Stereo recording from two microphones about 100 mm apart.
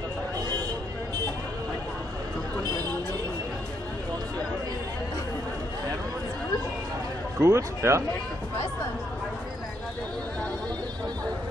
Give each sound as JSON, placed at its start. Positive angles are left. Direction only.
{"t": 7.3, "sound": "speech", "side_deg": -30}